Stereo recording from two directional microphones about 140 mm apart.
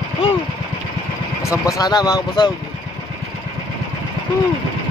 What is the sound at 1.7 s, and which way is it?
Speech, 30° left (ahead or behind).